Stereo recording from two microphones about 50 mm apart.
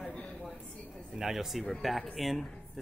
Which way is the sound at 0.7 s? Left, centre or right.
Left.